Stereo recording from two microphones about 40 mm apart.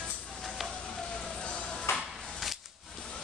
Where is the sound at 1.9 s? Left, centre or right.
Left.